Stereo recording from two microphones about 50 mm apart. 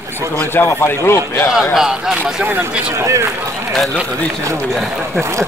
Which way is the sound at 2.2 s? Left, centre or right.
Right.